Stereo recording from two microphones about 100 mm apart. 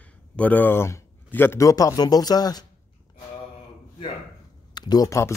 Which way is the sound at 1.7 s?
35° left (ahead or behind).